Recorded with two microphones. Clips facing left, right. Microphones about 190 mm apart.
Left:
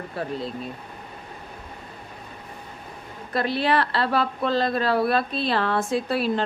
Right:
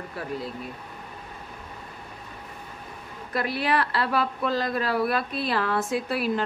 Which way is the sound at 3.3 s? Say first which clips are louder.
Left 3 dB; 30° left (ahead or behind).